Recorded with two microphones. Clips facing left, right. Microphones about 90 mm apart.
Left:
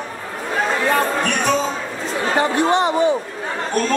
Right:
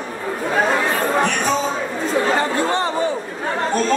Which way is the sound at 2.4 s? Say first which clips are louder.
Left 3 dB; 20° left (ahead or behind).